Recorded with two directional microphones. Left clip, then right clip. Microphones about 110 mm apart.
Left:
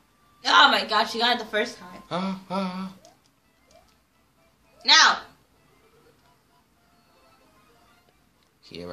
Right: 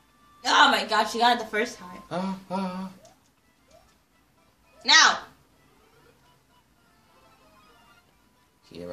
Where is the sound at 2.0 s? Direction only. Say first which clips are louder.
Left 2 dB; 45° left (ahead or behind).